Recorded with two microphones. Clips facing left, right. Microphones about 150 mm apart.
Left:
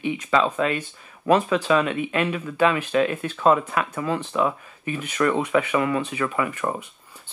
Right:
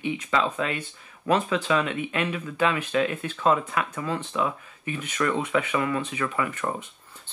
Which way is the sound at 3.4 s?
20° left (ahead or behind).